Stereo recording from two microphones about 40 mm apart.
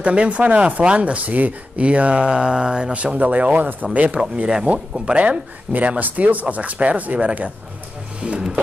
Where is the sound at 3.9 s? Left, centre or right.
Right.